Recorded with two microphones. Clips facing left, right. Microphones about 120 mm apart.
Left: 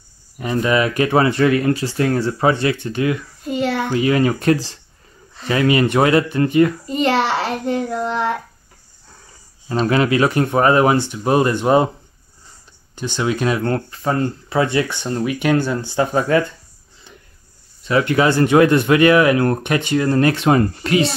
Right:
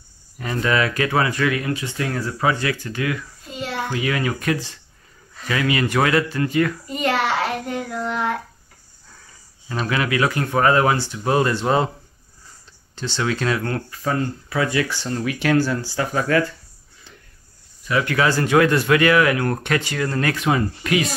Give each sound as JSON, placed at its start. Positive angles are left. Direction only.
{"t": 0.4, "sound": "a child's voice", "side_deg": 20}
{"t": 9.7, "sound": "a child's voice", "side_deg": 35}
{"t": 12.9, "sound": "speech", "side_deg": 15}
{"t": 13.6, "sound": "a child's voice", "side_deg": 30}
{"t": 17.8, "sound": "a child's voice", "side_deg": 25}